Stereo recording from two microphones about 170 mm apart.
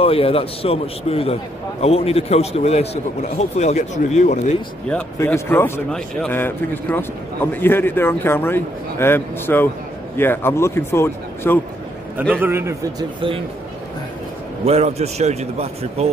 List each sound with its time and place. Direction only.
0.0 s a man's voice: 35° left (ahead or behind)
4.8 s a man's voice: 10° left (ahead or behind)
12.4 s a man's voice: 15° right (ahead or behind)
14.6 s a man's voice: 40° right (ahead or behind)